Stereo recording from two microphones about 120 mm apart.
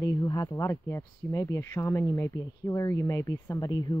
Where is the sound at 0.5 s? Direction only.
25° left (ahead or behind).